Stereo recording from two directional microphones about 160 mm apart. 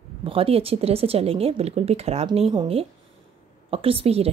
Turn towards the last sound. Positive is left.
turn(degrees=-40)  # may be behind; listen again after turning